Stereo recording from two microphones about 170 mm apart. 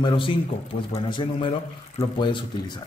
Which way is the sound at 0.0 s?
30° left (ahead or behind).